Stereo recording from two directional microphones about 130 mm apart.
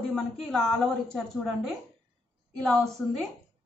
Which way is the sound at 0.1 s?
5° left (ahead or behind).